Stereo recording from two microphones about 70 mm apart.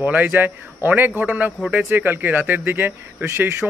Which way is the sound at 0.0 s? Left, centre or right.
Right.